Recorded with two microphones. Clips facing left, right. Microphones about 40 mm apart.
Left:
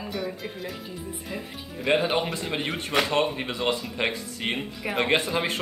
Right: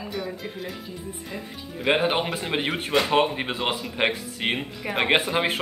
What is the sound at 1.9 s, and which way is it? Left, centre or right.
Speech, right.